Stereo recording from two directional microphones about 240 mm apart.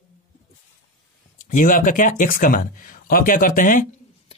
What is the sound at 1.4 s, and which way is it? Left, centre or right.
Speech, left.